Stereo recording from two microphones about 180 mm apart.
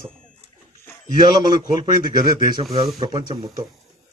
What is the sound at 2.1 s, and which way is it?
Speech, 30° right (ahead or behind).